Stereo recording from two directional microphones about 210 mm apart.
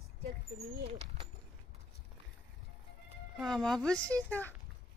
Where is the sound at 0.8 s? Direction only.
25° right (ahead or behind).